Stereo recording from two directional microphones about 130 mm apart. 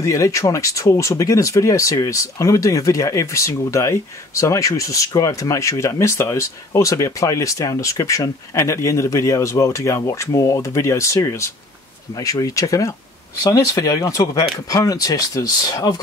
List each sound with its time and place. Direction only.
0.0 s speech: 25° left (ahead or behind)